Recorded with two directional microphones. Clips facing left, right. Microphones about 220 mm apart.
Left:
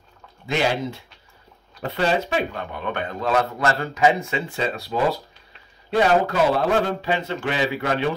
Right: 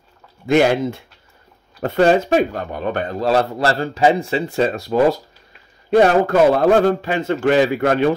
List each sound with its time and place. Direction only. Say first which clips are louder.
0.5 s a man's voice: right 8 dB; 50° right (ahead or behind)